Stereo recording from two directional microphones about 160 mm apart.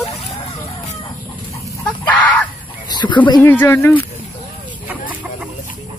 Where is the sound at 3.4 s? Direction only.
15° left (ahead or behind).